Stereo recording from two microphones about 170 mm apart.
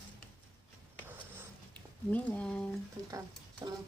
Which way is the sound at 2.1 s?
10° left (ahead or behind).